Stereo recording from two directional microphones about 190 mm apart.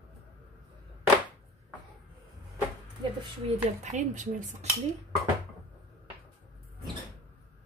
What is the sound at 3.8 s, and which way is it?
Speech, 40° right (ahead or behind).